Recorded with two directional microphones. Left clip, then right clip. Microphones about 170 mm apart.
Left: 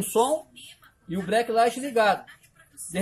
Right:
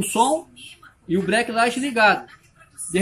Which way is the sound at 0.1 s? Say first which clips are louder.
Right 3 dB; 35° left (ahead or behind).